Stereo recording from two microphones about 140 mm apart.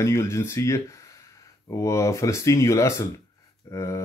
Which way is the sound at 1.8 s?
20° left (ahead or behind).